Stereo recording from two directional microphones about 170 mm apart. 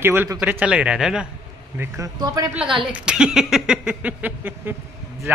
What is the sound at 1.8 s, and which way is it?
Speech, 20° right (ahead or behind).